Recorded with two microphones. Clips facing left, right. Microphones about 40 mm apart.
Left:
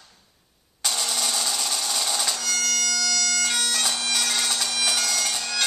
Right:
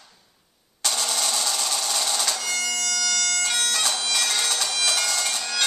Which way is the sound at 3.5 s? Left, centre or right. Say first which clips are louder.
Right 1 dB; centre.